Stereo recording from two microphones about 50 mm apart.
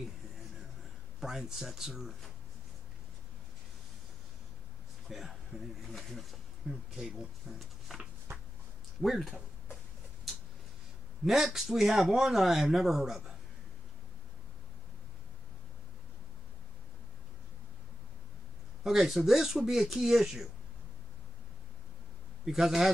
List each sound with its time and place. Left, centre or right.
1.2 s speech: centre
5.1 s speech: centre
6.7 s speech: right
7.0 s speech: centre
9.0 s speech: centre
11.2 s speech: centre
18.9 s speech: centre
22.4 s speech: centre